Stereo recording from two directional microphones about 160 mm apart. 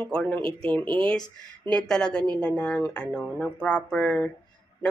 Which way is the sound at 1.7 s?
5° left (ahead or behind).